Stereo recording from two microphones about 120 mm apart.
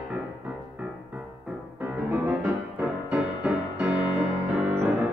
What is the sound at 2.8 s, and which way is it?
Music, 10° right (ahead or behind).